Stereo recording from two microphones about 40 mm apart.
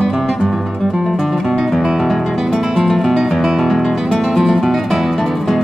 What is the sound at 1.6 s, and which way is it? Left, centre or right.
Music, centre.